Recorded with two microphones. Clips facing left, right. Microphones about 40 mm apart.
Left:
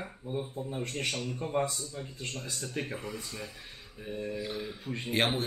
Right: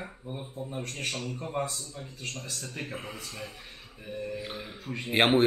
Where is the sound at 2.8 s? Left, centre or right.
Right.